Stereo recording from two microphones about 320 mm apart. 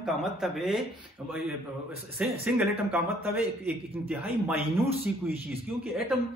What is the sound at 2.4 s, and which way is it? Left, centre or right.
A man's voice, centre.